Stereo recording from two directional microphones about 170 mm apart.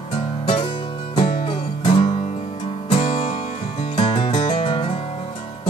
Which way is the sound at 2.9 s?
40° left (ahead or behind).